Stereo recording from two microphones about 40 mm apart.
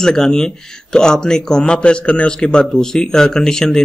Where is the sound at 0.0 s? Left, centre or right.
Centre.